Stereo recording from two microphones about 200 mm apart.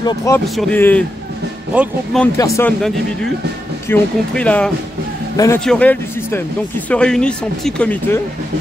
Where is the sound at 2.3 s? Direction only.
15° left (ahead or behind).